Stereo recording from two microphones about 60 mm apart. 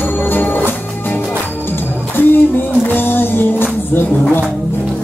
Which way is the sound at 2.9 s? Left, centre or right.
Left.